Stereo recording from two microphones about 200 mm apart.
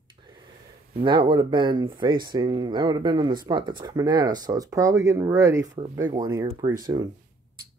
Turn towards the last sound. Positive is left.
turn(degrees=-20)  # may be behind; listen again after turning